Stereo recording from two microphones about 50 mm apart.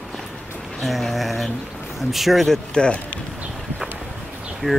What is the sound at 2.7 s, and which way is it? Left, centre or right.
Speech, centre.